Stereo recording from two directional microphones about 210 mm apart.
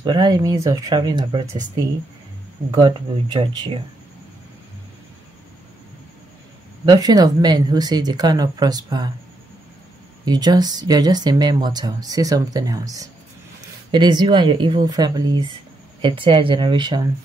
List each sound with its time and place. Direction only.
0.0 s speech: 20° right (ahead or behind)
2.7 s speech: 20° right (ahead or behind)
6.9 s speech: 20° right (ahead or behind)
10.2 s speech: 20° right (ahead or behind)